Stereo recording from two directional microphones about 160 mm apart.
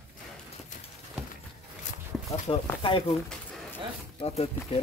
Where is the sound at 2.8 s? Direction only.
35° left (ahead or behind).